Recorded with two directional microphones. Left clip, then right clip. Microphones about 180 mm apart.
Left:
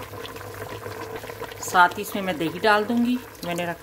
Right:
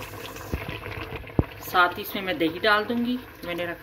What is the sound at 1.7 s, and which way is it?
Speech, 40° left (ahead or behind).